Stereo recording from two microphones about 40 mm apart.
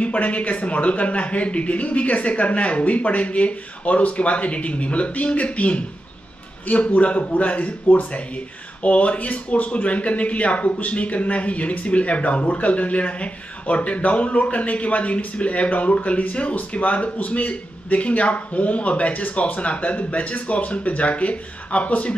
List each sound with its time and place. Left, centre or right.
0.0 s a man's voice: left